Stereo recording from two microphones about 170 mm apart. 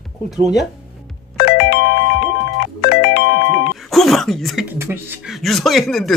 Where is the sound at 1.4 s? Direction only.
90° left.